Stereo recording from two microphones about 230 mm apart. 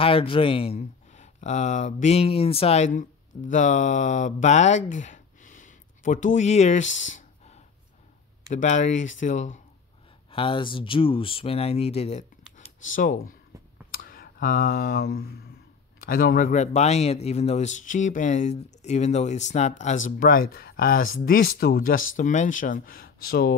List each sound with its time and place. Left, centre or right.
0.0 s speech: left
10.3 s speech: left